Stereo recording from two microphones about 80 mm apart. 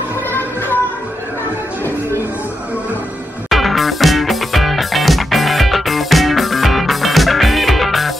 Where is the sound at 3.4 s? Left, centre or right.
Centre.